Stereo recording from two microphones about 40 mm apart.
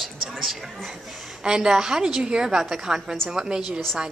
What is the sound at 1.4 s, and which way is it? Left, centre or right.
A woman's voice, centre.